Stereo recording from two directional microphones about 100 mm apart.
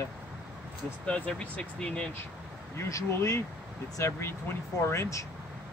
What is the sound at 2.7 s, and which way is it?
Speech, 30° left (ahead or behind).